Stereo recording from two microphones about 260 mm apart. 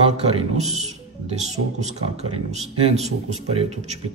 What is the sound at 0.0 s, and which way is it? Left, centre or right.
A man's voice, right.